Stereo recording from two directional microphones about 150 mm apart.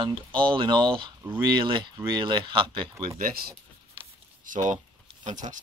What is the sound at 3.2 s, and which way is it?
Speech, 90° right.